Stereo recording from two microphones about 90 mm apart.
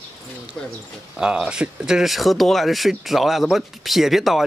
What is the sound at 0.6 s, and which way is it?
Speech, 15° left (ahead or behind).